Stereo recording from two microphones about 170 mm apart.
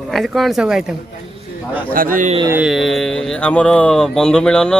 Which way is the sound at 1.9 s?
55° right (ahead or behind).